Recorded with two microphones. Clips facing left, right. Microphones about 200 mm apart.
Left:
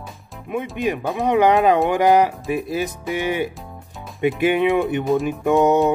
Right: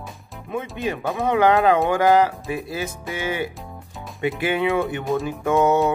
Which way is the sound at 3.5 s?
Centre (ahead or behind).